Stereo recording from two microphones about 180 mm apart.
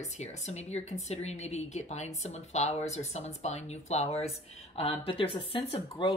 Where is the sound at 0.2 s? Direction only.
40° left (ahead or behind).